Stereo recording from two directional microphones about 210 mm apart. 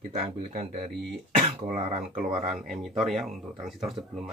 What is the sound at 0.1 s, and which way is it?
Speech, 30° right (ahead or behind).